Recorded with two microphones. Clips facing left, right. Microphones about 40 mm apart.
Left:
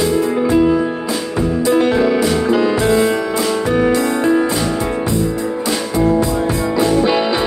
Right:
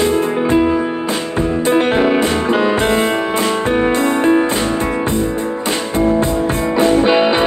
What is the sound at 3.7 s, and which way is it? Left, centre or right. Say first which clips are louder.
Music: left 1 dB; right.